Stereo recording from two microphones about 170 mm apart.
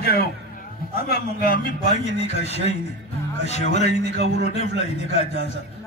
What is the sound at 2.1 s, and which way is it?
A man's voice, 40° left (ahead or behind).